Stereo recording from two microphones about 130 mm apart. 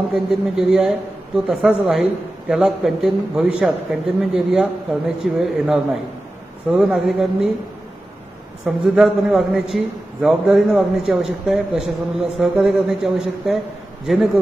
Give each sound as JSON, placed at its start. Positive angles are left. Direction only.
{"t": 0.3, "sound": "a man's voice", "side_deg": -5}
{"t": 8.6, "sound": "a man's voice", "side_deg": -5}